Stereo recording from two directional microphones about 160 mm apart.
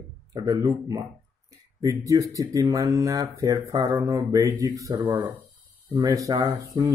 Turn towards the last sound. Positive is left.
turn(degrees=-20)  # may be behind; listen again after turning